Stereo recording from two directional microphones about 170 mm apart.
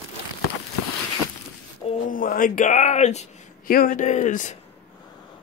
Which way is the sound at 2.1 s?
55° left (ahead or behind).